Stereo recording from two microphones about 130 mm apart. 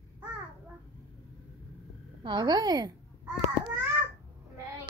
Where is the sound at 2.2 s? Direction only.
35° right (ahead or behind).